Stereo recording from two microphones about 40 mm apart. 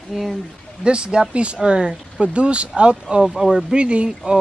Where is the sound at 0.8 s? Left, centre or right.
Right.